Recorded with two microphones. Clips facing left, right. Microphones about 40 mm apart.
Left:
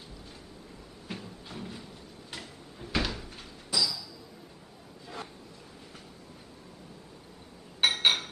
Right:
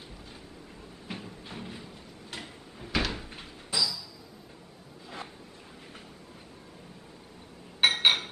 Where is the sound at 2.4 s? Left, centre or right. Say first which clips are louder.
Right 1 dB; centre.